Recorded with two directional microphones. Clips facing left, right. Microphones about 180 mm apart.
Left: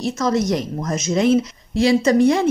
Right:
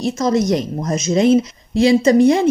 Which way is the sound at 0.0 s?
15° right (ahead or behind).